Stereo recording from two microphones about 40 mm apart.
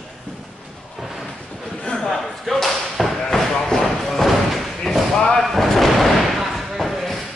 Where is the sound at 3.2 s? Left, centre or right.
Centre.